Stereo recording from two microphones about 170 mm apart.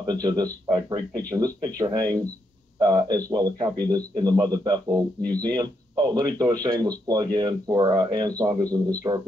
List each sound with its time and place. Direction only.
0.0 s speech: 25° right (ahead or behind)